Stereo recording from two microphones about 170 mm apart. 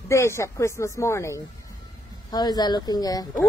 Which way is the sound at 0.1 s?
15° left (ahead or behind).